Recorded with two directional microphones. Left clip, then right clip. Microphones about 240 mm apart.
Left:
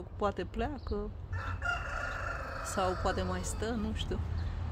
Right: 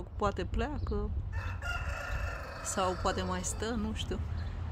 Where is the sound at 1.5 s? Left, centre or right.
Right.